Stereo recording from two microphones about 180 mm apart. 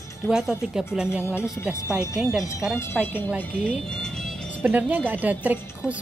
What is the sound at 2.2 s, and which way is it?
Speech, 5° right (ahead or behind).